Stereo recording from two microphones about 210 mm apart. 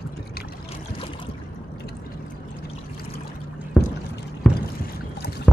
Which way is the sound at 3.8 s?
5° left (ahead or behind).